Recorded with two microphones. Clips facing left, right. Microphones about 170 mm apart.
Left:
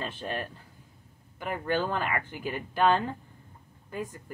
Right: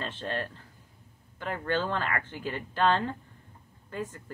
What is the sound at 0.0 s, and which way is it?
A woman's voice, 10° left (ahead or behind).